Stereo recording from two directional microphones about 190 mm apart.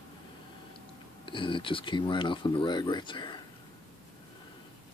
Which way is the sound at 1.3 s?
25° left (ahead or behind).